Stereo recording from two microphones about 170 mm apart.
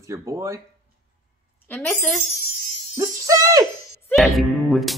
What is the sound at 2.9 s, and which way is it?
Speech, 15° right (ahead or behind).